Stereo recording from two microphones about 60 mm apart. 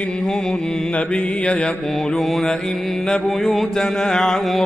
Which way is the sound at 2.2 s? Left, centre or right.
Centre.